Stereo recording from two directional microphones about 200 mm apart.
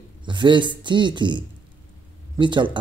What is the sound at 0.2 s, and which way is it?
A man's voice, 25° right (ahead or behind).